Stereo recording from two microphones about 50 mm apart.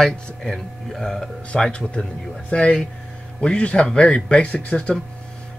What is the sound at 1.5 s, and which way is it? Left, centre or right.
Speech, centre.